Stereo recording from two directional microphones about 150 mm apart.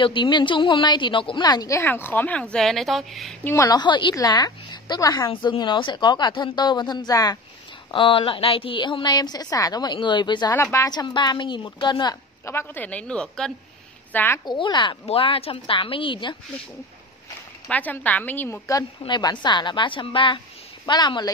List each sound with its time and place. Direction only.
0.0 s a woman's voice: 30° left (ahead or behind); by 3.3 s centre (ahead or behind)
3.4 s a woman's voice: 20° left (ahead or behind)
10.5 s a woman's voice: 15° left (ahead or behind)
14.4 s a woman's voice: 30° left (ahead or behind)
17.6 s a woman's voice: 10° left (ahead or behind); by 21.3 s 30° left (ahead or behind)